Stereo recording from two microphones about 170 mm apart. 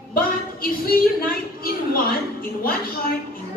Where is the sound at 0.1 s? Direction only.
60° left (ahead or behind).